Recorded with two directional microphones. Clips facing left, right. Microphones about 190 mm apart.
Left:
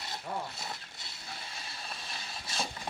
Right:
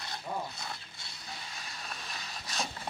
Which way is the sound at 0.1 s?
25° left (ahead or behind).